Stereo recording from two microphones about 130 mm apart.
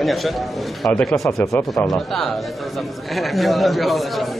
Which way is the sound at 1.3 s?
20° left (ahead or behind).